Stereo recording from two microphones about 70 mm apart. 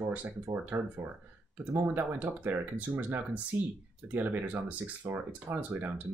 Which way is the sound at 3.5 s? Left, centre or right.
Right.